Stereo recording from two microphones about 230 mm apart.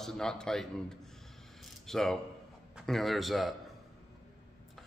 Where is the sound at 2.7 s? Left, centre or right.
Centre.